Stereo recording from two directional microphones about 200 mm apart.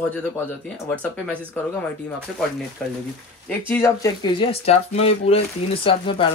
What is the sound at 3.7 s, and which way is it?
Speech, 15° left (ahead or behind).